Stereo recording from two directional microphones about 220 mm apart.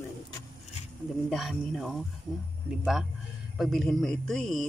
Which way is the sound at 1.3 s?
Centre (ahead or behind).